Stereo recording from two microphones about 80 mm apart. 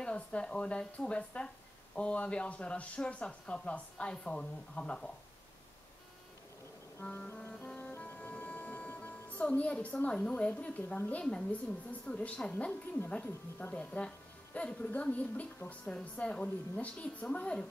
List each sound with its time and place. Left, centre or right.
0.0 s a woman's voice: centre
7.0 s speech: left
7.4 s music: centre
7.9 s speech: centre
13.1 s a woman's voice: left